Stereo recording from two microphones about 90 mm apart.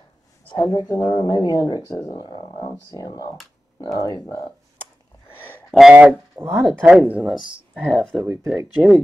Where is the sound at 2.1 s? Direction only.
60° left (ahead or behind).